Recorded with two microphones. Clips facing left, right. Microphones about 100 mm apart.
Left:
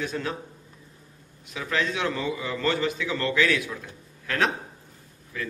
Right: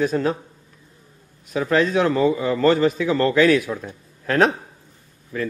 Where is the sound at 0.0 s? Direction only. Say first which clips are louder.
Right 10 dB; 40° right (ahead or behind).